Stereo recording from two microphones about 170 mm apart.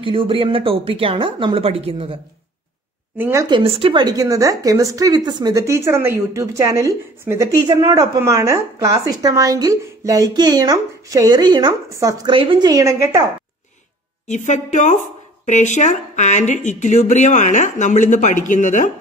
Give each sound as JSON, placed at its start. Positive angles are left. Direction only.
{"t": 0.0, "sound": "a woman's voice", "side_deg": -30}
{"t": 3.2, "sound": "speech", "side_deg": -15}
{"t": 3.4, "sound": "a woman's voice", "side_deg": -30}
{"t": 14.2, "sound": "speech", "side_deg": 45}